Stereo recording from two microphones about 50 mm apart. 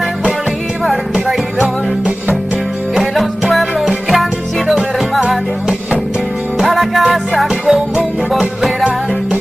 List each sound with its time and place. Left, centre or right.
1.1 s music: centre
3.0 s music: centre
6.6 s music: centre